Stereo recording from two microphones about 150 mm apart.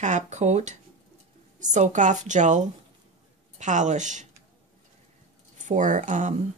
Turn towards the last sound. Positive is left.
turn(degrees=-55)  # may be behind; listen again after turning